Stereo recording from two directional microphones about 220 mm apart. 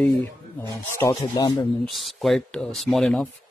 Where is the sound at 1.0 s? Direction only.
15° left (ahead or behind).